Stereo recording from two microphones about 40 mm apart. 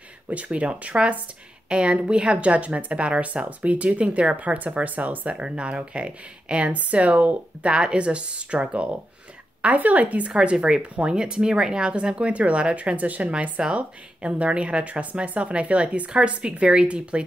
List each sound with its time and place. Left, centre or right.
0.3 s speech: right
5.3 s speech: right
6.7 s speech: right
7.7 s speech: right
10.4 s speech: right
13.3 s speech: right